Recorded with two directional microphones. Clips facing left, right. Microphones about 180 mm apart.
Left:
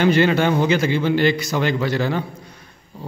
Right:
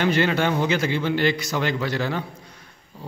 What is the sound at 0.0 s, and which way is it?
A man's voice, 20° left (ahead or behind).